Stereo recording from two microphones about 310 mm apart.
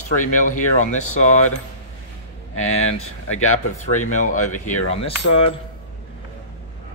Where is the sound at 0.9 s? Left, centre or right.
Left.